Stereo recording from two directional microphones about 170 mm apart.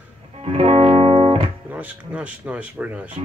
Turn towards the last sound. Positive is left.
turn(degrees=-10)  # may be behind; listen again after turning